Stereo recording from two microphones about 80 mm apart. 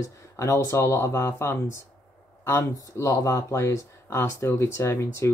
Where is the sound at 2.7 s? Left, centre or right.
Left.